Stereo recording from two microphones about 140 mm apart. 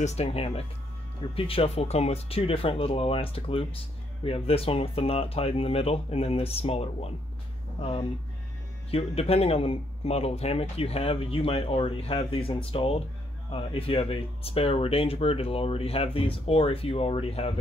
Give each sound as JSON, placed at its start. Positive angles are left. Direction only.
{"t": 0.0, "sound": "speech", "side_deg": 50}